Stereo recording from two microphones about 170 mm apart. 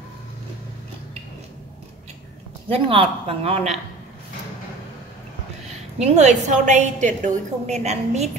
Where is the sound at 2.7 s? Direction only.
35° right (ahead or behind).